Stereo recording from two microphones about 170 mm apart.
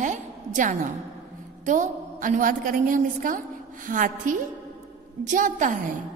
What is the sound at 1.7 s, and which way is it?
A woman's voice, 50° right (ahead or behind).